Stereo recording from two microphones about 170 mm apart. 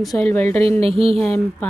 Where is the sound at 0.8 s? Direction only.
35° right (ahead or behind).